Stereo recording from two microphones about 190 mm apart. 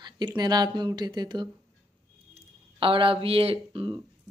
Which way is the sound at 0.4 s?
20° right (ahead or behind).